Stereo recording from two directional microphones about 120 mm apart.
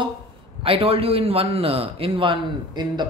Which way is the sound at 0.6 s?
50° right (ahead or behind).